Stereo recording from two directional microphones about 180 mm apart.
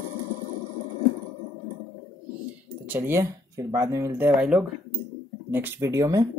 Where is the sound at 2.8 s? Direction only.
10° right (ahead or behind).